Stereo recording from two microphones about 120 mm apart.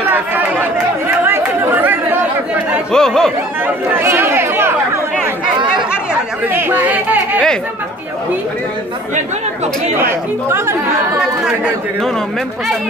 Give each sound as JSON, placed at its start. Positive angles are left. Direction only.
{"t": 0.1, "sound": "chatter", "side_deg": -15}
{"t": 2.9, "sound": "chatter", "side_deg": 5}
{"t": 3.6, "sound": "chatter", "side_deg": -20}
{"t": 6.5, "sound": "speech", "side_deg": -15}
{"t": 9.9, "sound": "speech", "side_deg": -20}
{"t": 11.4, "sound": "speech", "side_deg": -5}